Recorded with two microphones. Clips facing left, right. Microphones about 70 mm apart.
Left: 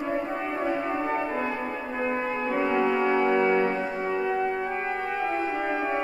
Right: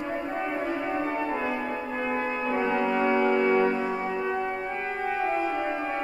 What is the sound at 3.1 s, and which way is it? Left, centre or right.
Brass instrument, centre.